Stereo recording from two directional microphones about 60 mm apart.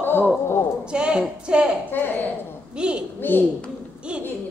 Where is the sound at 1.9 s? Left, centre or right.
Left.